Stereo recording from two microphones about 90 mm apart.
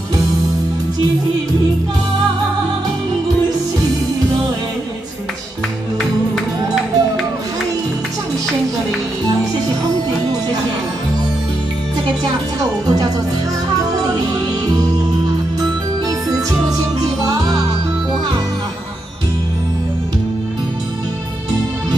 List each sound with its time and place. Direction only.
6.3 s music: centre (ahead or behind)
12.8 s speech: 45° right (ahead or behind)
17.2 s music: 40° right (ahead or behind)